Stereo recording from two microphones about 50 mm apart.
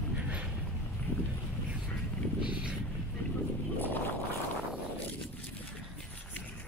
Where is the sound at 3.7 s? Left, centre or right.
Left.